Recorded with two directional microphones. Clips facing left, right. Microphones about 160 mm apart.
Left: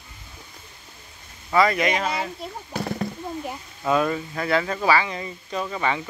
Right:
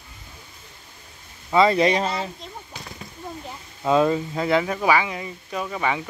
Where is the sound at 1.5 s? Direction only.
25° right (ahead or behind).